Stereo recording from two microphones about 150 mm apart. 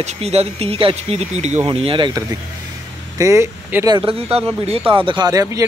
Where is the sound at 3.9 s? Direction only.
40° right (ahead or behind); by 5.6 s 20° right (ahead or behind).